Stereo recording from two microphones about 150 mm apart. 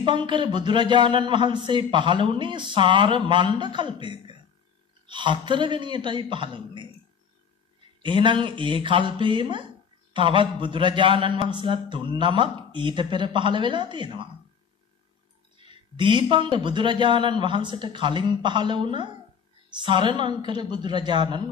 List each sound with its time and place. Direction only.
0.0 s a man's voice: 35° right (ahead or behind)
8.0 s a man's voice: 35° right (ahead or behind)
15.5 s a man's voice: 35° right (ahead or behind)